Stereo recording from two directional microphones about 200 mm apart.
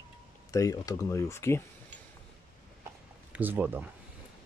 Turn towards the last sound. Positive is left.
turn(degrees=-10)  # may be behind; listen again after turning